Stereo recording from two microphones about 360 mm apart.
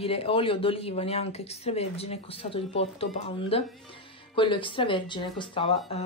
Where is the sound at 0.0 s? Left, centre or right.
Centre.